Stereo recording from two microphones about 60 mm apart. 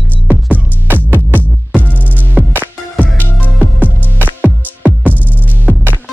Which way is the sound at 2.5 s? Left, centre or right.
Right.